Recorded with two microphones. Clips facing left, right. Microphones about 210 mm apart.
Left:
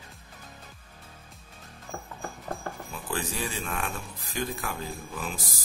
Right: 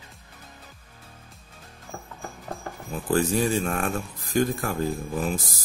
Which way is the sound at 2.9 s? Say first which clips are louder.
Right 12 dB; 45° right (ahead or behind).